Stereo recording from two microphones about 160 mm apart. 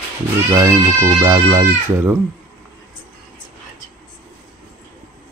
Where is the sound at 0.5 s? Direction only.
15° right (ahead or behind).